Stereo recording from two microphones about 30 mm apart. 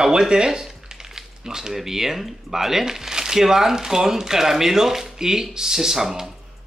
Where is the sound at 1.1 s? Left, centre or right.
Centre.